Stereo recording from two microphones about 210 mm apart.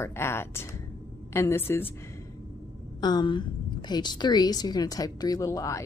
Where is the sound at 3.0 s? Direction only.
20° left (ahead or behind).